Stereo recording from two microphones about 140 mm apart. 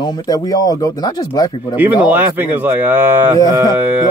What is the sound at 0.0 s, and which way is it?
Speech, 30° left (ahead or behind).